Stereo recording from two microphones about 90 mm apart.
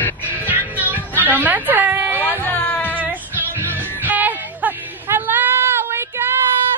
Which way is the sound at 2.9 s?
20° right (ahead or behind).